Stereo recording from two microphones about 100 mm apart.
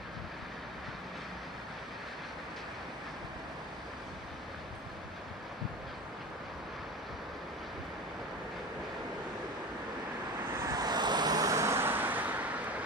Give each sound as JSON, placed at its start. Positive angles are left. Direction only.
{"t": 10.6, "sound": "vehicle", "side_deg": -40}